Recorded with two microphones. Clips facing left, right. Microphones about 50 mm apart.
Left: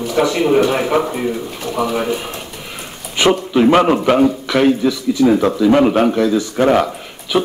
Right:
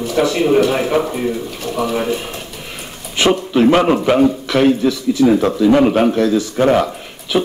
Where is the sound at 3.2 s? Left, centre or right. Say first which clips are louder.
Even; centre.